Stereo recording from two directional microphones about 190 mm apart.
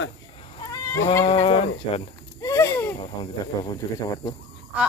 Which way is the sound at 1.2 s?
30° left (ahead or behind).